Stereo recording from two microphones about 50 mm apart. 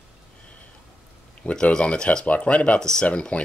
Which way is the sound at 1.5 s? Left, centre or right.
Centre.